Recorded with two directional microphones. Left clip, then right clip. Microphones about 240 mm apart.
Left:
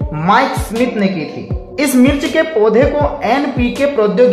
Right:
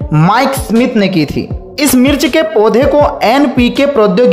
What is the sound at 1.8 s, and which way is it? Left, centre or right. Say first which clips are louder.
A woman's voice: right 3 dB; right.